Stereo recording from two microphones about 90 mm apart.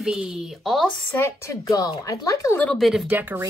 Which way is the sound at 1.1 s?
25° left (ahead or behind).